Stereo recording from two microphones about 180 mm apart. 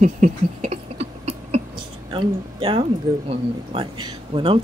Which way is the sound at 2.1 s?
30° right (ahead or behind).